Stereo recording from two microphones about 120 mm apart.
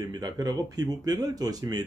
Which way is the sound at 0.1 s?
35° right (ahead or behind).